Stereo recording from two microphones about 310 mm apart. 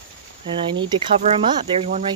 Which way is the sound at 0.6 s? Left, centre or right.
Centre.